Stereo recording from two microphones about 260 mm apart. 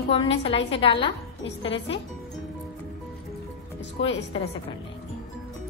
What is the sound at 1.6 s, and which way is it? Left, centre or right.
Speech, left.